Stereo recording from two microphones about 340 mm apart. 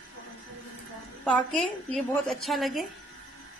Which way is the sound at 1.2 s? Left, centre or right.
Centre.